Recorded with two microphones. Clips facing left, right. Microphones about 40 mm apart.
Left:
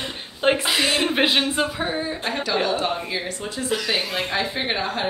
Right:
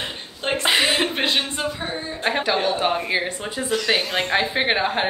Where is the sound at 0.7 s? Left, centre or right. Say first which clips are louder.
Right 2 dB; right.